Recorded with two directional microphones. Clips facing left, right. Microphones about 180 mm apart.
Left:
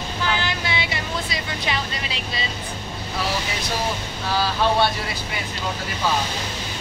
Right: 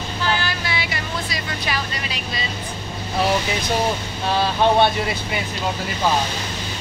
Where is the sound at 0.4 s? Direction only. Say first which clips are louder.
Even; 20° left (ahead or behind).